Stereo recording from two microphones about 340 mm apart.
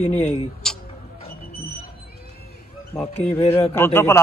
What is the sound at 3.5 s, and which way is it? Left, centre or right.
Speech, centre.